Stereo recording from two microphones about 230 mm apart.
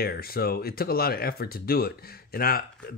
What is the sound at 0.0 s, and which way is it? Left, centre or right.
Speech, left.